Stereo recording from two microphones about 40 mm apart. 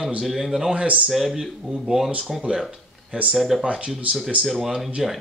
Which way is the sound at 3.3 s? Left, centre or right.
Centre.